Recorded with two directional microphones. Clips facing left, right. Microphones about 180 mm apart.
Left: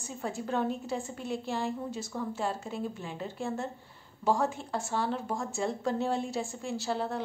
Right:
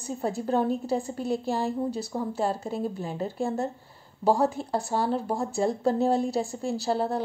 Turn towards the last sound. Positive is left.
turn(degrees=-35)  # may be behind; listen again after turning